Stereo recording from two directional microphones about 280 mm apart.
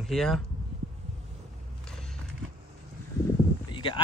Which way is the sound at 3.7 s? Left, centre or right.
Centre.